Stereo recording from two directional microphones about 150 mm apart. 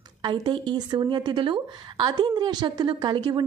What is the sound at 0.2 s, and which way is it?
A woman's voice, 30° right (ahead or behind).